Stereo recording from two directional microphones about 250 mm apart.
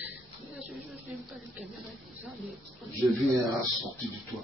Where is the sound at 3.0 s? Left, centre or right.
Centre.